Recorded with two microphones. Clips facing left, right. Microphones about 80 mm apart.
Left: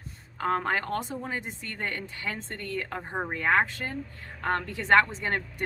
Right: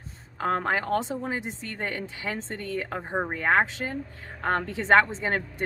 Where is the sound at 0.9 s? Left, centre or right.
Centre.